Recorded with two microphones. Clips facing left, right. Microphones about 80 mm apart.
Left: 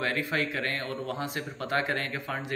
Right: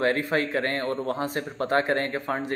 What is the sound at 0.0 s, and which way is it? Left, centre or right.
A man's voice, right.